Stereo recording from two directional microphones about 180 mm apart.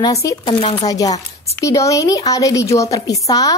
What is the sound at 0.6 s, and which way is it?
Speech, 35° left (ahead or behind).